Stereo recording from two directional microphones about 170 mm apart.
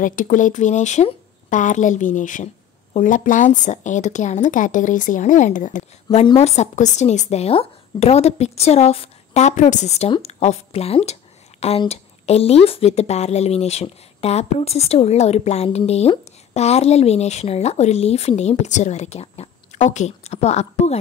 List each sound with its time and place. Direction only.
0.0 s a woman's voice: 50° left (ahead or behind)